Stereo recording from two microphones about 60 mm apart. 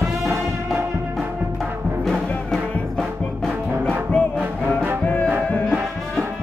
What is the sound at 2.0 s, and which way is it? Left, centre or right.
Music, centre.